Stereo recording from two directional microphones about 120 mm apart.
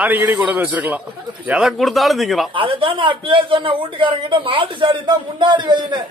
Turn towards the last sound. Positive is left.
turn(degrees=-40)  # may be behind; listen again after turning